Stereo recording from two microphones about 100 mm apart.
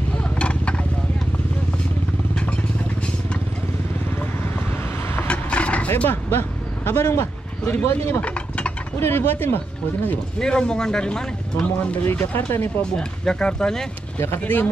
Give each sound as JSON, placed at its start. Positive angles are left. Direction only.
{"t": 0.2, "sound": "a sound", "side_deg": 10}
{"t": 5.1, "sound": "vehicle", "side_deg": 15}
{"t": 7.1, "sound": "speech", "side_deg": 25}
{"t": 12.4, "sound": "speech", "side_deg": 25}
{"t": 12.9, "sound": "speech", "side_deg": 10}
{"t": 14.4, "sound": "speech", "side_deg": 20}